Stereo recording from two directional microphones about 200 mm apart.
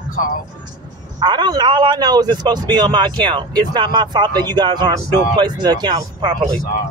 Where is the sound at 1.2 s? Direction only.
20° right (ahead or behind).